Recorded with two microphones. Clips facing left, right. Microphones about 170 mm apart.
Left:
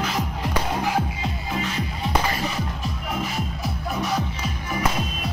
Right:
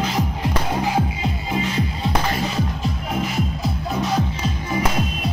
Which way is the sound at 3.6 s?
20° right (ahead or behind).